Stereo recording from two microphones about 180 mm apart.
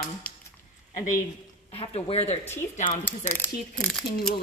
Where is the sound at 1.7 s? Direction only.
30° left (ahead or behind).